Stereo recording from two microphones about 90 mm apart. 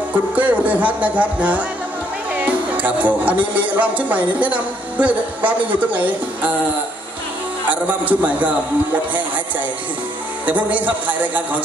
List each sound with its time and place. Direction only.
0.1 s speech: 15° right (ahead or behind)
7.7 s speech: 15° right (ahead or behind)
10.4 s speech: 15° right (ahead or behind)